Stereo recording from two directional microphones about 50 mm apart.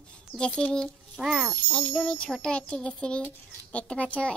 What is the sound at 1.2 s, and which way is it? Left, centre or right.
Speech, centre.